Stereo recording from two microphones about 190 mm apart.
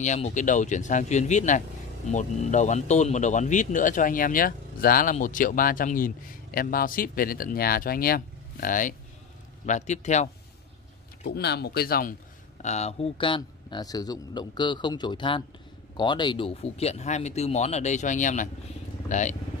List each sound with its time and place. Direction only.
0.0 s a man's voice: 40° left (ahead or behind)
11.2 s speech: 60° left (ahead or behind)
12.6 s a man's voice: 35° left (ahead or behind)